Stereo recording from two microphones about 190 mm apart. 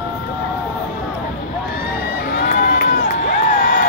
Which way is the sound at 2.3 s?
50° left (ahead or behind).